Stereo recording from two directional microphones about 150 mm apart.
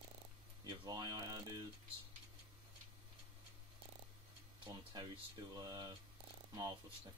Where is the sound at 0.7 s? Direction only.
25° right (ahead or behind).